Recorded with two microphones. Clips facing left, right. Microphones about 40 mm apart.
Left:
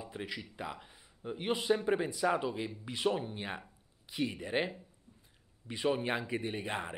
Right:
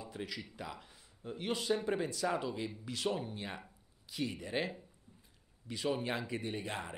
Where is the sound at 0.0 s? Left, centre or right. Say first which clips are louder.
Left 2 dB; centre.